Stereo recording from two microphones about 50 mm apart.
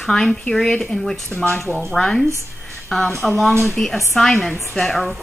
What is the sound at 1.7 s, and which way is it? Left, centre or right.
Speech, right.